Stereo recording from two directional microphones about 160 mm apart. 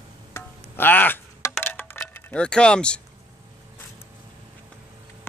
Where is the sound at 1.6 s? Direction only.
10° left (ahead or behind).